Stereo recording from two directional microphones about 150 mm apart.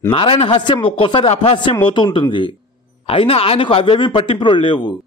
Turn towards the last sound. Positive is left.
turn(degrees=30)  # may be behind; listen again after turning